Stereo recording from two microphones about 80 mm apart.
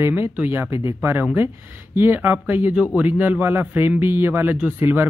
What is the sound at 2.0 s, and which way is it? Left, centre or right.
Speech, right.